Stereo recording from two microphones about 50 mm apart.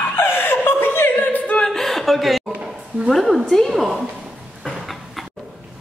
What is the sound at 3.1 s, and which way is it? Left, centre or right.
Speech, centre.